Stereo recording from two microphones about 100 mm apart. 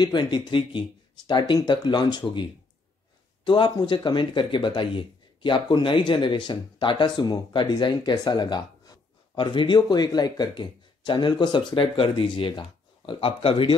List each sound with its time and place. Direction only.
0.0 s speech: 50° left (ahead or behind)